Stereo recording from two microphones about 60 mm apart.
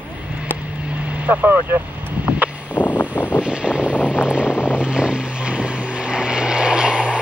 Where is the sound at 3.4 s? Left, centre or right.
Centre.